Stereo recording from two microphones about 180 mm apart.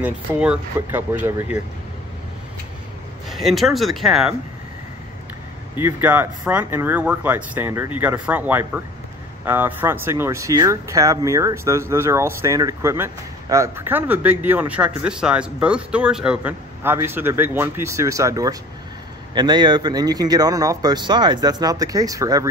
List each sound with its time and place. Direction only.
0.0 s speech: 10° right (ahead or behind)
3.3 s speech: centre (ahead or behind)
5.8 s speech: 10° right (ahead or behind)